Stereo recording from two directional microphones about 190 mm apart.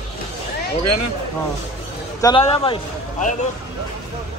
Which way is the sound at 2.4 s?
30° left (ahead or behind).